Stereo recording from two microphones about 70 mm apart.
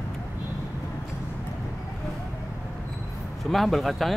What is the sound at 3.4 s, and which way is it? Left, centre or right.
Speech, centre.